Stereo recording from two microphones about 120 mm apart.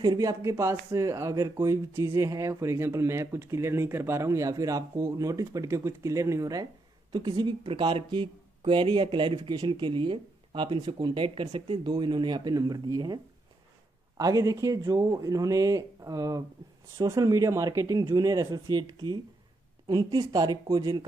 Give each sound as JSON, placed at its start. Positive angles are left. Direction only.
{"t": 0.0, "sound": "speech", "side_deg": -30}